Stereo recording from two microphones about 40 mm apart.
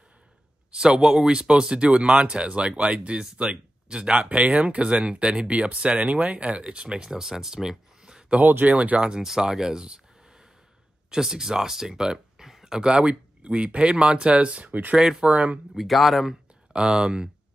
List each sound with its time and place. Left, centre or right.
0.7 s speech: centre; by 4.8 s right
4.8 s speech: right
8.4 s speech: right
8.6 s speech: right
9.2 s speech: centre
11.1 s speech: centre; by 14.7 s right
14.7 s speech: right
15.0 s speech: centre
15.2 s speech: right
15.7 s speech: centre
16.7 s speech: centre